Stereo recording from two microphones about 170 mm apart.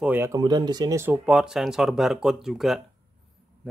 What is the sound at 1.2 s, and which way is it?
Speech, 5° right (ahead or behind).